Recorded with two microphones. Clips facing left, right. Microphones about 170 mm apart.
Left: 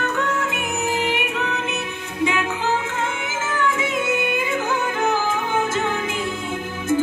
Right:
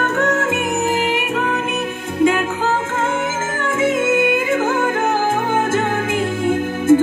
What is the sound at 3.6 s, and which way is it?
Music, 50° right (ahead or behind).